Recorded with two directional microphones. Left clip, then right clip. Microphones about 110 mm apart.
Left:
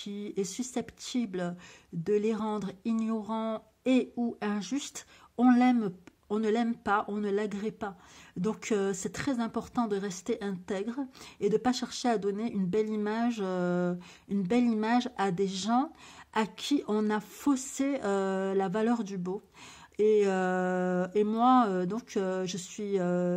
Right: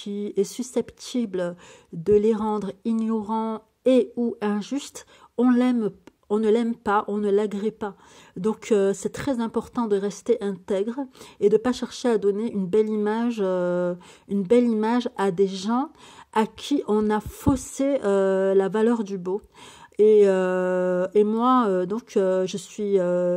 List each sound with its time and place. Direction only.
0.0 s a woman's voice: 40° right (ahead or behind)